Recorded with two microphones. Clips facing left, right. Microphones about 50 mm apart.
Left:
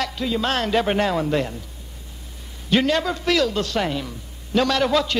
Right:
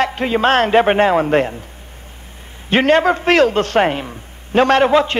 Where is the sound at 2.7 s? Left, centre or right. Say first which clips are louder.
Right 7 dB; right.